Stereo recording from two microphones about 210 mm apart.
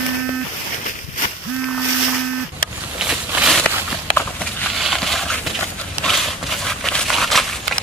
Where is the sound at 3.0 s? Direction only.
5° right (ahead or behind).